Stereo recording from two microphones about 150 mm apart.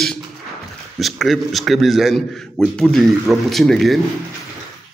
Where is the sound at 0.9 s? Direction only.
Centre (ahead or behind).